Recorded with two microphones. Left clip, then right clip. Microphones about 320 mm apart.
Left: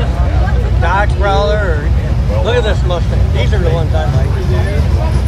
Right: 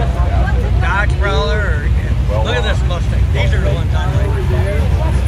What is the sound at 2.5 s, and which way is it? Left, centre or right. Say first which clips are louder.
Speech: left 6 dB; centre.